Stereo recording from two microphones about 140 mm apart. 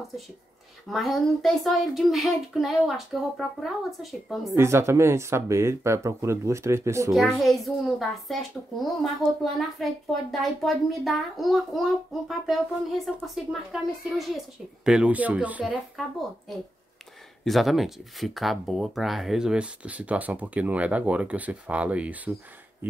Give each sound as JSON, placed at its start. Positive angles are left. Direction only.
{"t": 0.8, "sound": "a child's voice", "side_deg": 0}
{"t": 4.5, "sound": "speech", "side_deg": -20}
{"t": 7.1, "sound": "a child's voice", "side_deg": 0}
{"t": 17.5, "sound": "speech", "side_deg": 0}